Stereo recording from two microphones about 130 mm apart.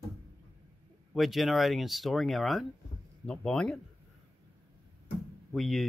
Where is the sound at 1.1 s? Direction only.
Centre (ahead or behind).